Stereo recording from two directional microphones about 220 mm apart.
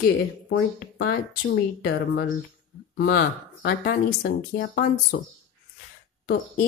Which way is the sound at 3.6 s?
45° left (ahead or behind).